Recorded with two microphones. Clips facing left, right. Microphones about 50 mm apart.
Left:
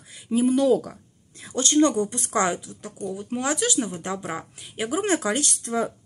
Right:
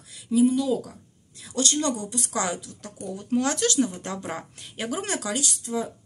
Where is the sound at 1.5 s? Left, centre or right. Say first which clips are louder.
Left 5 dB; left; by 5.0 s centre.